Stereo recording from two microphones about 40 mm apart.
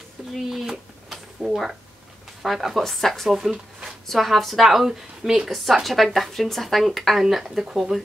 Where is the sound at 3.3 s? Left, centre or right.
Centre.